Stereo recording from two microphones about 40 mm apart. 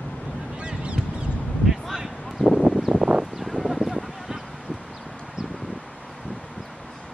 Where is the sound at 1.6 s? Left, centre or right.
Centre.